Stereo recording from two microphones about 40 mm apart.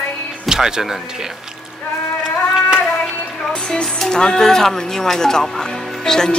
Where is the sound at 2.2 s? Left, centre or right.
Centre.